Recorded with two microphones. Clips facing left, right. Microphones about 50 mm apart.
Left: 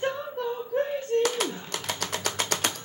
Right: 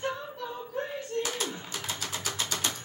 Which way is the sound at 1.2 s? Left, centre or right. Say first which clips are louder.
Left 7 dB; left.